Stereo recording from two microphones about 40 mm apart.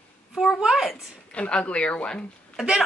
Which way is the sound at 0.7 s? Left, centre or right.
Centre.